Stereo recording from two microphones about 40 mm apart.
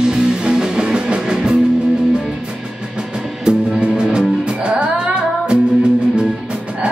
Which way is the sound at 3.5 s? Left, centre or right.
Right.